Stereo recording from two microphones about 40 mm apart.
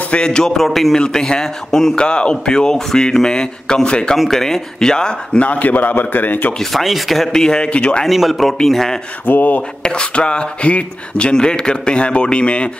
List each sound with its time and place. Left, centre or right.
0.1 s speech: centre
0.7 s speech: centre
0.9 s speech: centre
2.0 s speech: left
4.3 s speech: centre
5.4 s a man's voice: left
6.7 s speech: centre
7.3 s speech: centre
8.1 s speech: centre
9.2 s a man's voice: left
9.8 s speech: left